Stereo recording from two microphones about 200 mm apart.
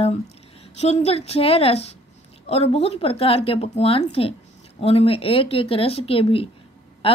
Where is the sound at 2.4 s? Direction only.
30° left (ahead or behind).